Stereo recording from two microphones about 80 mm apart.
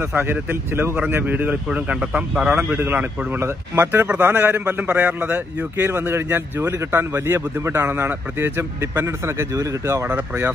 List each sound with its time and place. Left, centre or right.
0.1 s a man's voice: right
10.0 s a man's voice: right